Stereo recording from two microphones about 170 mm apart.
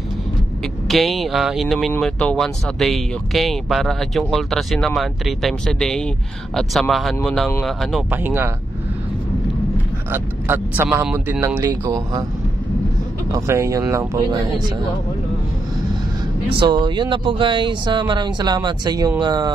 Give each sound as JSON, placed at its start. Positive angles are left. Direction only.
{"t": 0.8, "sound": "speech", "side_deg": 0}
{"t": 8.1, "sound": "speech", "side_deg": -10}
{"t": 10.1, "sound": "speech", "side_deg": -10}
{"t": 13.3, "sound": "speech", "side_deg": -15}
{"t": 16.4, "sound": "speech", "side_deg": -30}